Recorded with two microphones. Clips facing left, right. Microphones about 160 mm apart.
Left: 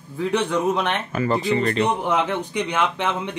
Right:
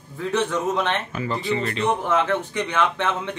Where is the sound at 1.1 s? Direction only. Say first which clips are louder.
Left 4 dB; 50° left (ahead or behind).